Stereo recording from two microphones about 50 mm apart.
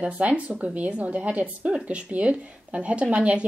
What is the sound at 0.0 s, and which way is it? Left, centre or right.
A woman's voice, right.